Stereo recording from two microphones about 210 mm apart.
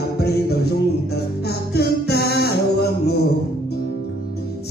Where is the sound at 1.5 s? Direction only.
50° left (ahead or behind).